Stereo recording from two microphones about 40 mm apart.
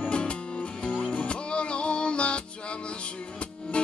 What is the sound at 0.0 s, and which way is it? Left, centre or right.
Music, left.